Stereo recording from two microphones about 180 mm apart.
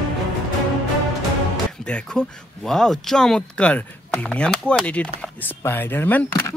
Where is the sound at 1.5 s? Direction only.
5° left (ahead or behind).